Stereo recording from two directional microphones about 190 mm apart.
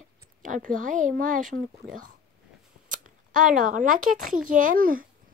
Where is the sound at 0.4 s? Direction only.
45° right (ahead or behind).